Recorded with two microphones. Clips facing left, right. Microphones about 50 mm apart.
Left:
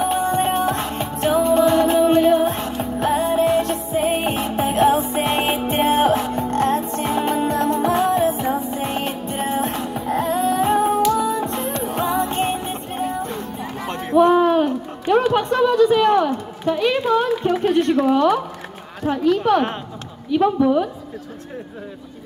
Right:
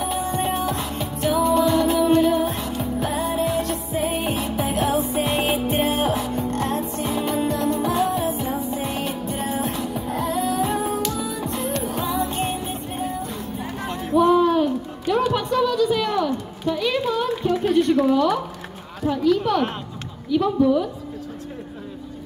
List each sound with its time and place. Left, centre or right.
0.0 s music: left
11.2 s music: left
11.7 s music: left
13.8 s a sound: left
18.0 s a woman's voice: left